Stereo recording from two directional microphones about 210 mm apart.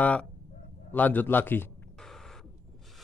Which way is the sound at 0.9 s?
10° left (ahead or behind).